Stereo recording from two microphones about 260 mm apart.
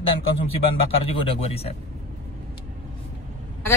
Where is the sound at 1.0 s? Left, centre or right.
Left.